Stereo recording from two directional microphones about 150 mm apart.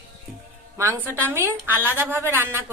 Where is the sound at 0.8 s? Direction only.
15° right (ahead or behind).